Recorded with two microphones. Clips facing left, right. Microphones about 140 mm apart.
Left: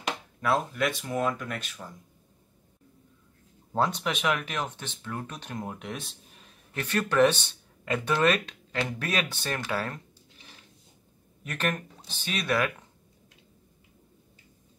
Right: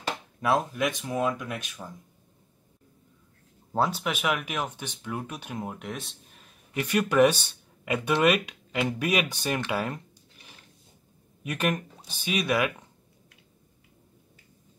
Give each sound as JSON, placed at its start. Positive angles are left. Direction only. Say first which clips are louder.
{"t": 0.4, "sound": "speech", "louder": "right 1 dB", "side_deg": -15}
{"t": 3.7, "sound": "speech", "louder": "right 1 dB", "side_deg": -5}
{"t": 6.7, "sound": "speech", "louder": "right 3 dB", "side_deg": -10}
{"t": 11.4, "sound": "speech", "louder": "right 3 dB", "side_deg": -10}